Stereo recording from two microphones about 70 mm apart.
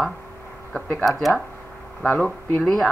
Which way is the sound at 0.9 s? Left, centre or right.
Centre.